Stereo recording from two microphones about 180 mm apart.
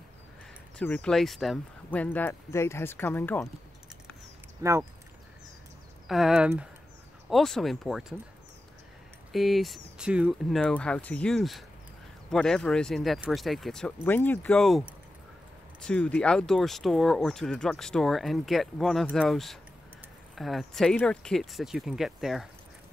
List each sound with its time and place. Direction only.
0.7 s speech: 5° left (ahead or behind)
4.6 s speech: 20° right (ahead or behind)
6.0 s speech: centre (ahead or behind)
9.3 s speech: centre (ahead or behind)